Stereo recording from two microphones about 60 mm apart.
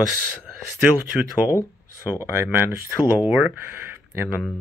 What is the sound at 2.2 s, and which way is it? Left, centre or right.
Speech, right.